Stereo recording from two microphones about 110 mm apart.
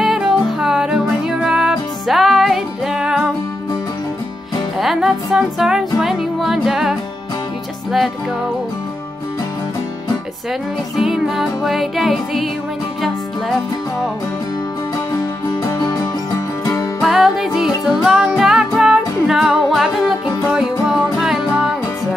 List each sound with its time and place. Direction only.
0.0 s music: 5° right (ahead or behind)
4.7 s music: centre (ahead or behind)
11.0 s music: 5° right (ahead or behind)
15.8 s music: 35° left (ahead or behind)
17.0 s music: centre (ahead or behind)